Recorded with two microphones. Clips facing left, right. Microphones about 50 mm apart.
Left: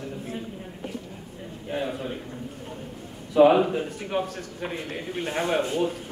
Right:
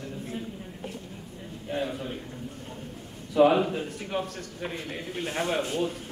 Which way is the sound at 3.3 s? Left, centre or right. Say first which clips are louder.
Left 3 dB; centre.